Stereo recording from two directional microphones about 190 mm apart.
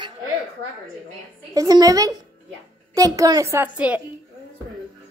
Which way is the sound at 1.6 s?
20° right (ahead or behind).